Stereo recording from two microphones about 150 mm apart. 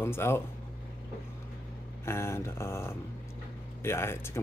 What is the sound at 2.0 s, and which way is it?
Speech, 15° left (ahead or behind).